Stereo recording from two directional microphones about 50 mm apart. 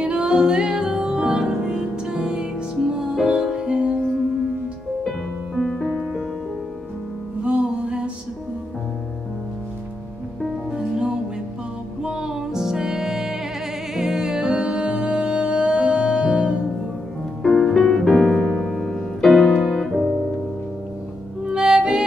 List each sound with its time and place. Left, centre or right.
0.0 s music: right
5.6 s music: centre
7.4 s music: right
12.0 s music: centre
17.4 s music: centre
19.7 s piano: centre
21.5 s music: centre